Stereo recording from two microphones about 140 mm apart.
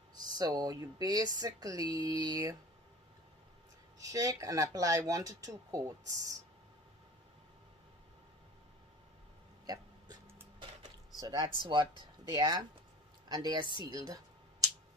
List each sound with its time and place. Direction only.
0.1 s speech: 30° right (ahead or behind)
4.0 s speech: 25° right (ahead or behind)
11.1 s speech: 30° right (ahead or behind)
13.8 s a sound: 30° right (ahead or behind)